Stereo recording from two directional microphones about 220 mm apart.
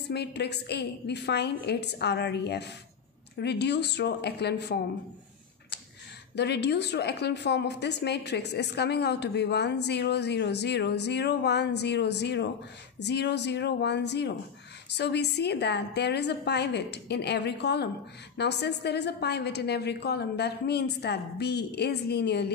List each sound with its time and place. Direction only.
0.1 s a woman's voice: 50° left (ahead or behind)
6.3 s a woman's voice: 50° left (ahead or behind)